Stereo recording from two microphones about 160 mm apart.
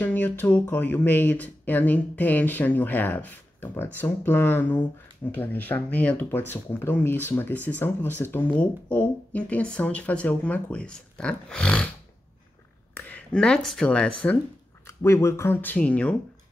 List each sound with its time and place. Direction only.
0.0 s speech: 10° left (ahead or behind)
12.9 s speech: 10° left (ahead or behind)